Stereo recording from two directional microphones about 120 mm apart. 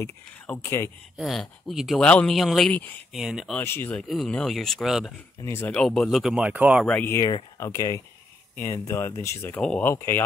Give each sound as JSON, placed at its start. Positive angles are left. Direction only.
{"t": 0.0, "sound": "speech", "side_deg": 20}
{"t": 1.1, "sound": "speech", "side_deg": 0}
{"t": 2.7, "sound": "speech", "side_deg": 15}
{"t": 3.1, "sound": "speech", "side_deg": 0}
{"t": 3.5, "sound": "speech", "side_deg": 20}
{"t": 4.1, "sound": "speech", "side_deg": 5}
{"t": 5.4, "sound": "speech", "side_deg": 20}
{"t": 5.7, "sound": "speech", "side_deg": 5}
{"t": 6.8, "sound": "speech", "side_deg": 10}
{"t": 7.1, "sound": "speech", "side_deg": 25}
{"t": 9.6, "sound": "speech", "side_deg": 5}
{"t": 9.8, "sound": "speech", "side_deg": 20}